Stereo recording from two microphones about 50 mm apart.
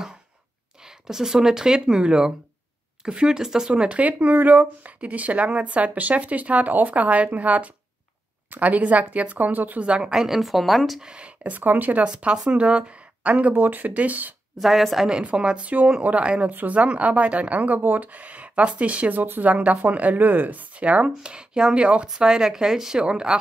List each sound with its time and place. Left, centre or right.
0.8 s speech: centre
4.0 s a woman's voice: right
9.8 s speech: centre
10.2 s a woman's voice: centre
11.0 s a woman's voice: centre; by 12.0 s right
12.4 s speech: right
13.6 s a woman's voice: right
14.6 s a woman's voice: centre
15.2 s speech: right
19.5 s speech: right